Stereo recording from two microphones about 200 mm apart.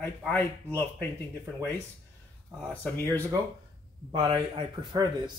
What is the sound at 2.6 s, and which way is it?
Speech, 10° left (ahead or behind).